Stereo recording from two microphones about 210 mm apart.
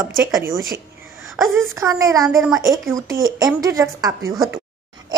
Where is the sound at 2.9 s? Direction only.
15° right (ahead or behind).